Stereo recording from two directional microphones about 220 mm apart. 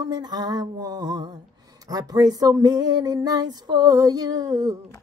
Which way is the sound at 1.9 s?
15° right (ahead or behind).